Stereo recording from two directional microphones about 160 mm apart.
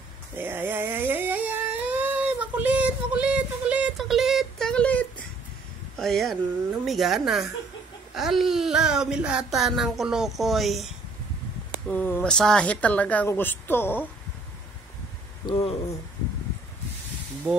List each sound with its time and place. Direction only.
0.4 s a sound: 15° right (ahead or behind); by 5.0 s 5° left (ahead or behind)
5.9 s speech: centre (ahead or behind)
11.9 s a woman's voice: 10° left (ahead or behind)
15.5 s speech: 40° left (ahead or behind)